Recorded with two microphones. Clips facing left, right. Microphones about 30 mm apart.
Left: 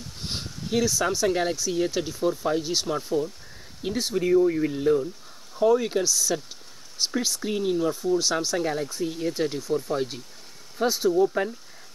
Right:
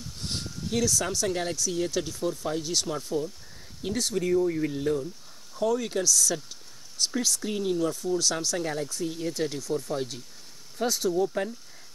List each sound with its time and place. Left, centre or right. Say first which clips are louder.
0.2 s speech: left 1 dB; centre